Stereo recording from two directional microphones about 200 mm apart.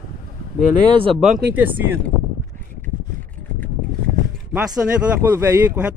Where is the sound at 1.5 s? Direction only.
10° right (ahead or behind).